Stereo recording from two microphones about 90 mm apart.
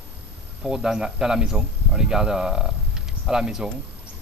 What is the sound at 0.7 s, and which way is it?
Speech, 5° right (ahead or behind).